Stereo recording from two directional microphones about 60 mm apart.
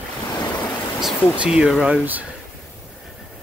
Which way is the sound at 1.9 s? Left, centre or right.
Right.